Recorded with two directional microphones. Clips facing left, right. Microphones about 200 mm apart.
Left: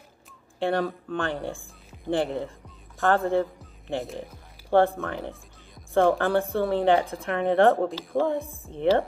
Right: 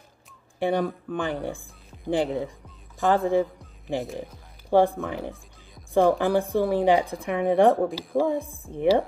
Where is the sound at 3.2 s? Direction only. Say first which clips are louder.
Right 2 dB; 15° right (ahead or behind).